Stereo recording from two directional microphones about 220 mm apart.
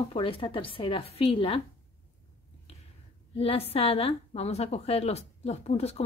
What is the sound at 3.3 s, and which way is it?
A woman's voice, 25° left (ahead or behind).